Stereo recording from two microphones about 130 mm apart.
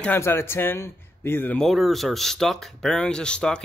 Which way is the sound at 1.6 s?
Centre (ahead or behind).